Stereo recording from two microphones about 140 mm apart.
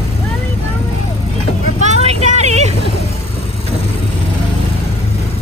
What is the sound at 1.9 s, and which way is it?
Vehicle, 50° right (ahead or behind).